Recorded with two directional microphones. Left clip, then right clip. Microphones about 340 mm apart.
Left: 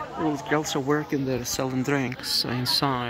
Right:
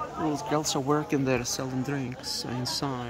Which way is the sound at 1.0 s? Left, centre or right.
Right.